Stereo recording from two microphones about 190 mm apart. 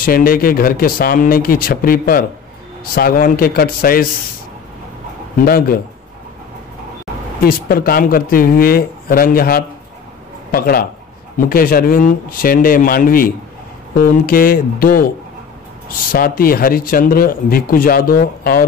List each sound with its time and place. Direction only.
0.0 s speech: 50° left (ahead or behind)
5.4 s speech: 50° left (ahead or behind)
7.4 s speech: 50° left (ahead or behind)
16.1 s speech: 50° left (ahead or behind)